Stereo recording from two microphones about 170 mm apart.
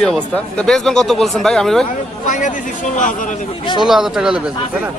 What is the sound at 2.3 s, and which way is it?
A man's voice, 45° left (ahead or behind).